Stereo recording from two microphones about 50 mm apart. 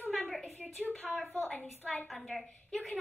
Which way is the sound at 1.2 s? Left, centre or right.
Left.